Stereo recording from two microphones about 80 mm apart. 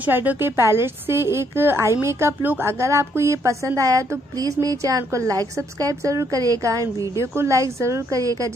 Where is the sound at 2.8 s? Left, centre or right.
Right.